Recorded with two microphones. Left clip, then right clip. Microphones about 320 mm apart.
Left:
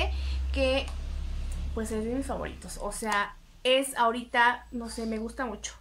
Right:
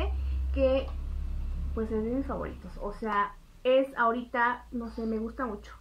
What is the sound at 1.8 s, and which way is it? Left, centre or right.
Speech, centre.